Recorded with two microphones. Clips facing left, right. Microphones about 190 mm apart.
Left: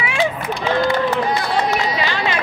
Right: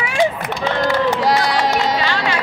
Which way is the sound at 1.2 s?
90° right.